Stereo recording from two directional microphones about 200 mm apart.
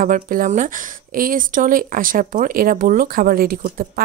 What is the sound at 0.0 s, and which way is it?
Speech, 45° right (ahead or behind).